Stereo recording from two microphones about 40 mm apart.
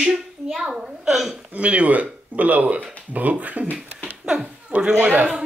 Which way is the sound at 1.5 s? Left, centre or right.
Right.